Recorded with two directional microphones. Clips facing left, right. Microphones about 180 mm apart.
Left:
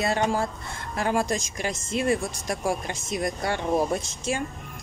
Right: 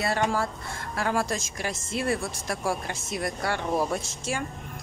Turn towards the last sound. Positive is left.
turn(degrees=20)  # may be behind; listen again after turning